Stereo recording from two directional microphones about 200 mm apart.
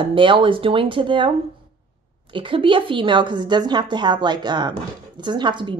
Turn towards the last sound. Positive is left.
turn(degrees=-25)  # may be behind; listen again after turning